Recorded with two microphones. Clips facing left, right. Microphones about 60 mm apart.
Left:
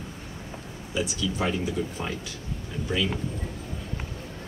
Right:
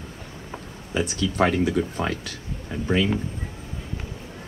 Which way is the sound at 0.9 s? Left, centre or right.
Right.